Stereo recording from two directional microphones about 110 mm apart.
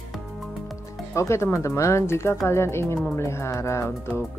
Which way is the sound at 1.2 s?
25° left (ahead or behind).